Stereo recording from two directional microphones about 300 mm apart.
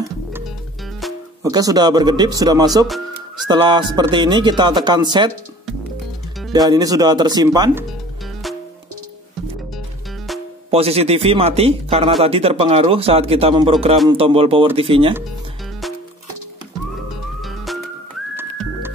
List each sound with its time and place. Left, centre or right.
1.0 s music: centre
1.4 s speech: centre
6.5 s speech: centre
10.7 s speech: centre
17.4 s music: centre